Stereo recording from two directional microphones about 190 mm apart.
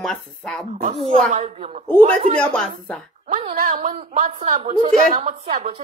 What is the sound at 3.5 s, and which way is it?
A woman's voice, 45° right (ahead or behind).